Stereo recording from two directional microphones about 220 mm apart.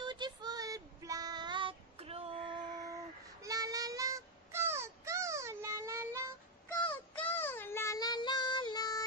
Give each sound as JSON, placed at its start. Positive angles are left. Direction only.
{"t": 0.0, "sound": "child singing", "side_deg": -20}
{"t": 6.7, "sound": "child singing", "side_deg": 10}